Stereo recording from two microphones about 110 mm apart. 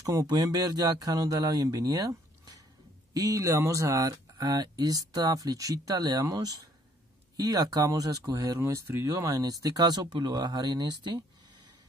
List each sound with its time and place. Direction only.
0.0 s speech: 35° right (ahead or behind)